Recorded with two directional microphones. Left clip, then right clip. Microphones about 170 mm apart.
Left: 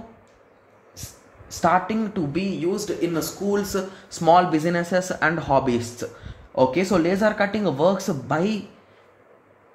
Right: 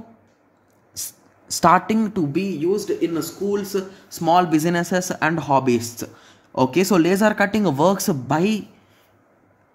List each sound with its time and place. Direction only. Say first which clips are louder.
1.0 s a sound: right 8 dB; 50° right (ahead or behind)
1.5 s speech: right 4 dB; 50° right (ahead or behind)
2.3 s speech: right 3 dB; 20° right (ahead or behind); by 8.2 s 35° right (ahead or behind)
8.3 s speech: right 2 dB; 20° right (ahead or behind)